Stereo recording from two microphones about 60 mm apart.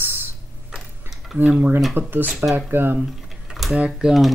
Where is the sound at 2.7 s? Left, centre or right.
Right.